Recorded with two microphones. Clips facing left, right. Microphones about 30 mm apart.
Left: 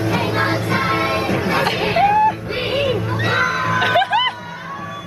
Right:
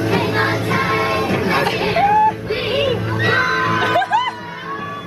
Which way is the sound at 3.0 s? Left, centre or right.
Right.